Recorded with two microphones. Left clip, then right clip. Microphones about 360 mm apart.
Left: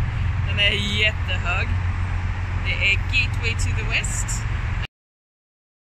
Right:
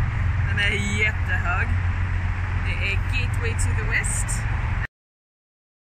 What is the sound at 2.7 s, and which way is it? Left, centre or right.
Speech, left.